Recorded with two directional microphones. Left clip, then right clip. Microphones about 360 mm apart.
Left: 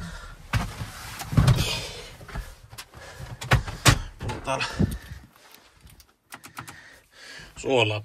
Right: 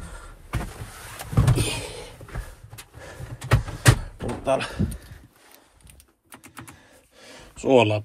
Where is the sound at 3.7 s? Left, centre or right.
Centre.